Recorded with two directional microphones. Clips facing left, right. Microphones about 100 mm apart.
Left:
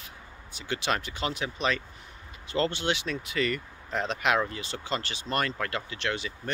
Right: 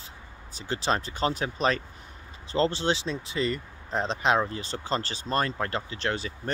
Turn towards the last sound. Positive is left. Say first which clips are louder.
# right 2 dB
turn(degrees=-35)  # may be behind; listen again after turning